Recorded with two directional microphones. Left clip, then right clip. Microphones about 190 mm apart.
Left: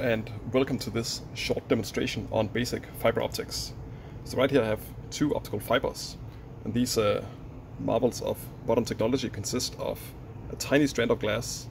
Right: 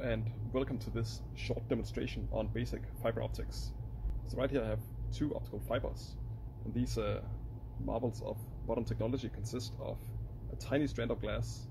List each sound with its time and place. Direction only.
0.0 s speech: 5° left (ahead or behind)